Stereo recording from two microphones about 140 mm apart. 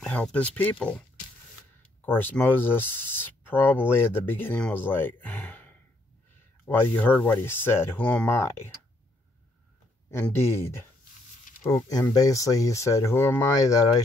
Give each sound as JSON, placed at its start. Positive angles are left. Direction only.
{"t": 0.0, "sound": "speech", "side_deg": 10}
{"t": 10.2, "sound": "speech", "side_deg": 20}
{"t": 11.7, "sound": "speech", "side_deg": 25}